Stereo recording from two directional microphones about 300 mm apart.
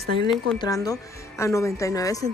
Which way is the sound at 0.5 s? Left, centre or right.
Centre.